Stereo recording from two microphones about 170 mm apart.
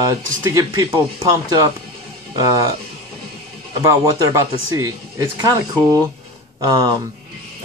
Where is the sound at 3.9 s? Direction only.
20° right (ahead or behind).